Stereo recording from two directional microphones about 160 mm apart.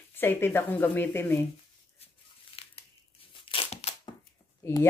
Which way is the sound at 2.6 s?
35° left (ahead or behind).